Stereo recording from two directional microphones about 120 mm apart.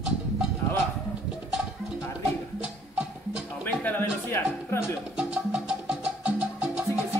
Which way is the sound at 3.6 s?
15° left (ahead or behind).